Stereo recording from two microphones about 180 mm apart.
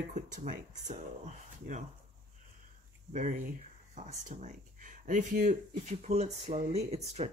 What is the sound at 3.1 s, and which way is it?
Speech, 45° right (ahead or behind).